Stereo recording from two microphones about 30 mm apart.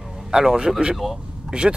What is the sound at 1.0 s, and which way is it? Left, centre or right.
Speech, centre.